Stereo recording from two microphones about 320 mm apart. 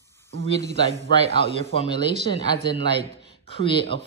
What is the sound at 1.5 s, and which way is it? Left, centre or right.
Speech, centre.